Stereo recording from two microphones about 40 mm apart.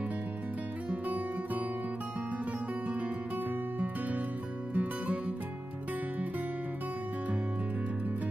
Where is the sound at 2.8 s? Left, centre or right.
Right.